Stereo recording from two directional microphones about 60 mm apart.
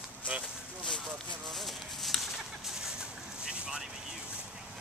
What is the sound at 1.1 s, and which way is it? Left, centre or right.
Chicken, centre.